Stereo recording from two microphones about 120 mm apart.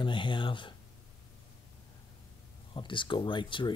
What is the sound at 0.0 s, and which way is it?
Speech, 40° left (ahead or behind).